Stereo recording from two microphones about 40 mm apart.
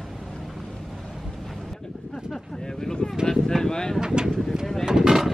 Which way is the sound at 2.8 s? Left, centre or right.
Centre.